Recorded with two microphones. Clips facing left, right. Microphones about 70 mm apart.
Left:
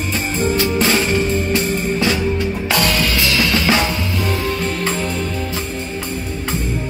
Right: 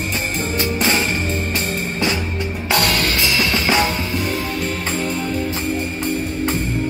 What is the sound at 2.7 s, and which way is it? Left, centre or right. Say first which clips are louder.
Music: even; right.